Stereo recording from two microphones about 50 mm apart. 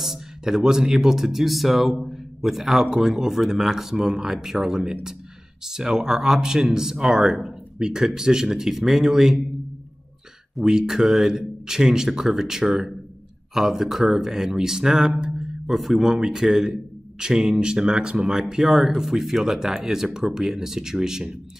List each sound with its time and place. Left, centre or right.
0.0 s speech: centre
10.6 s speech: centre
15.1 s a sound: centre
15.7 s speech: centre